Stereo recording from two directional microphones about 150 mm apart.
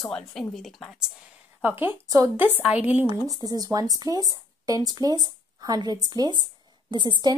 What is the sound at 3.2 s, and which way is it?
A woman's voice, 25° right (ahead or behind).